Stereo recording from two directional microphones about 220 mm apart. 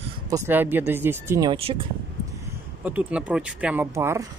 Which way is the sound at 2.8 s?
5° right (ahead or behind).